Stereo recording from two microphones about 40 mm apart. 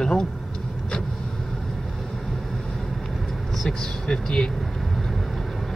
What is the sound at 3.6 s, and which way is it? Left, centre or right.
Speech, centre.